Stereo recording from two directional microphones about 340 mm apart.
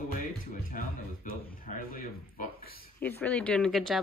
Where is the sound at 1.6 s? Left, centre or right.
Left.